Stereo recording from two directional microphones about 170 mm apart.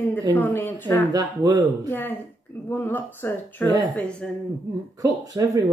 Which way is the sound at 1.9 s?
10° left (ahead or behind).